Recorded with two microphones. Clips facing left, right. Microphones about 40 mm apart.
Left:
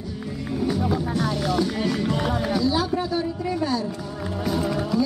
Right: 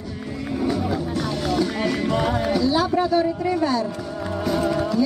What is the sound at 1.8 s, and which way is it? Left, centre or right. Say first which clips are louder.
Music: right 2 dB; centre.